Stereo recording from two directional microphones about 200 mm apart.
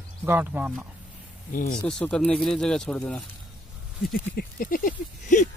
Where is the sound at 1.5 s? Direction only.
40° left (ahead or behind).